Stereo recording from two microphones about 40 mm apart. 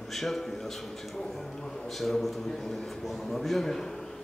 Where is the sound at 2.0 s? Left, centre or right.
Centre.